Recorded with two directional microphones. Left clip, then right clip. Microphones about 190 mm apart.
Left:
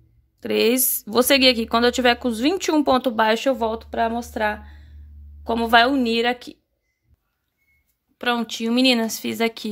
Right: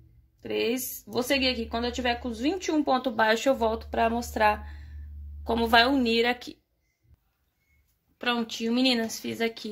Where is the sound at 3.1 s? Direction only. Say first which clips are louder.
Left 4 dB; 30° left (ahead or behind).